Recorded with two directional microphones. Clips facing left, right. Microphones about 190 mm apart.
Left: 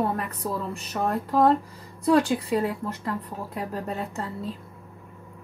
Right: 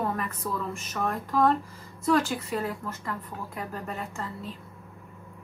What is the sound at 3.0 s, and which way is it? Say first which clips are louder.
A woman's voice: left 4 dB; 35° left (ahead or behind).